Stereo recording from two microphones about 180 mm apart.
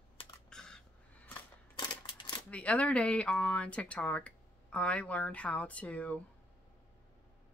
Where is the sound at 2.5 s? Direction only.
5° left (ahead or behind).